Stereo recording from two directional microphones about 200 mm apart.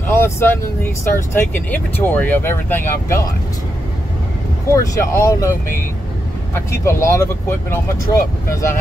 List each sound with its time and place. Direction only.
0.0 s speech: 10° left (ahead or behind)
4.7 s speech: 15° left (ahead or behind)